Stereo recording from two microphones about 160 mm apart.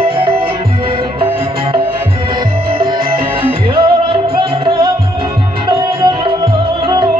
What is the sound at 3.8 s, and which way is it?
Music, 30° right (ahead or behind).